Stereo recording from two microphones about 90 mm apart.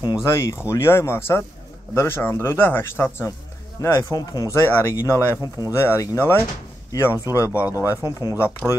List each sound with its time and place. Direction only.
0.2 s a man's voice: 30° left (ahead or behind)
4.1 s speech: 45° left (ahead or behind)
4.5 s a man's voice: 30° left (ahead or behind)